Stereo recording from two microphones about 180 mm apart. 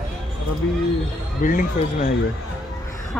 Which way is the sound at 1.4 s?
50° left (ahead or behind).